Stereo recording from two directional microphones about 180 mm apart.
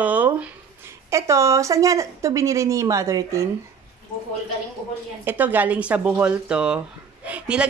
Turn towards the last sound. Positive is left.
turn(degrees=-5)  # may be behind; listen again after turning